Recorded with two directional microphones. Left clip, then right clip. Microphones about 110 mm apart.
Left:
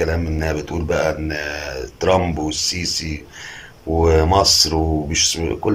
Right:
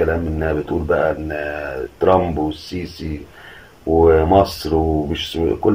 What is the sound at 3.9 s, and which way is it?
Speech, 10° right (ahead or behind).